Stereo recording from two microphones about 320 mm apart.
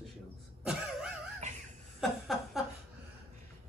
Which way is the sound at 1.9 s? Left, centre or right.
Centre.